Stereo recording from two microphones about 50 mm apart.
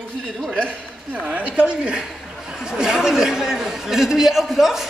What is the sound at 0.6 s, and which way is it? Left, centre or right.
A woman's voice, right.